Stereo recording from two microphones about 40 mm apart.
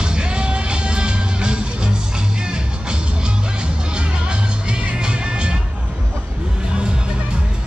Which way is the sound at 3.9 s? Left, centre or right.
Right.